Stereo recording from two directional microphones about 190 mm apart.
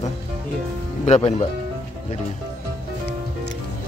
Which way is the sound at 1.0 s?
35° left (ahead or behind).